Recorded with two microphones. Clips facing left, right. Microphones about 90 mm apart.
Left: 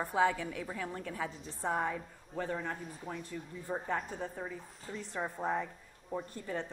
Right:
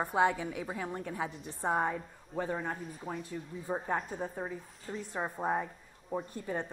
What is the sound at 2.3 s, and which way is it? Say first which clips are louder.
A woman's voice: right 2 dB; centre (ahead or behind).